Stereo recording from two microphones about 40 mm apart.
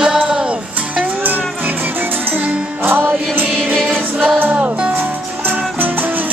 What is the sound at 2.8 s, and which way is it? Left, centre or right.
Music, right.